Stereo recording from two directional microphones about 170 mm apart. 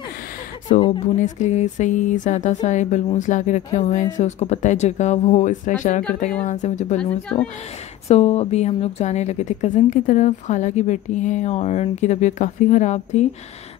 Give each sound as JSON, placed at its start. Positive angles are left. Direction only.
{"t": 0.7, "sound": "speech", "side_deg": 30}
{"t": 1.1, "sound": "a woman's voice", "side_deg": 45}
{"t": 7.0, "sound": "a woman's voice", "side_deg": 5}
{"t": 8.1, "sound": "a woman's voice", "side_deg": 40}